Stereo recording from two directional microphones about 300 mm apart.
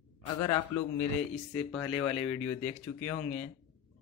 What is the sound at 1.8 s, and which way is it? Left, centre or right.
Speech, centre.